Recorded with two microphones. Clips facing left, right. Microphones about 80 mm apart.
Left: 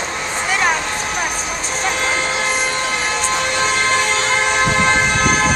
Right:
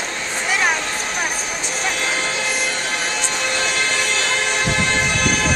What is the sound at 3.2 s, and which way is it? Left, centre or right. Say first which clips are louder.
Train: left 4 dB; left.